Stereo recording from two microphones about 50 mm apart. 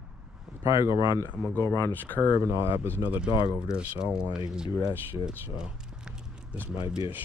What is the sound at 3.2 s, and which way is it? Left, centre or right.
Speech, right.